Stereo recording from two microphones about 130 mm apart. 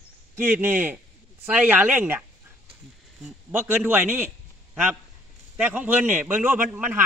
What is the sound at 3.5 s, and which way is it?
Speech, 15° right (ahead or behind).